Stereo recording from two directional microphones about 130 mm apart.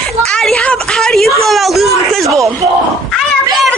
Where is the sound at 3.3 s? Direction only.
10° left (ahead or behind).